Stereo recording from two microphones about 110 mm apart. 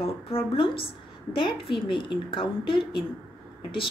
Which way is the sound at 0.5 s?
55° left (ahead or behind).